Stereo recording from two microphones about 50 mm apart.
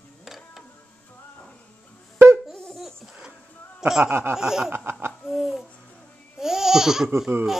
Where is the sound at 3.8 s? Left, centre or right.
Centre.